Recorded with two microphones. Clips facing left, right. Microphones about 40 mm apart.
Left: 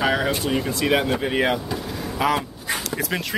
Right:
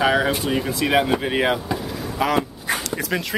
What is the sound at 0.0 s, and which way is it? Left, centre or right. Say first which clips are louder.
Speech: right 2 dB; centre.